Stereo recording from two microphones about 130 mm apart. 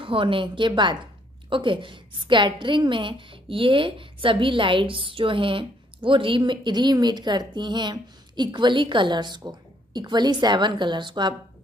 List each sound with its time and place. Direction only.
0.0 s a woman's voice: 40° right (ahead or behind)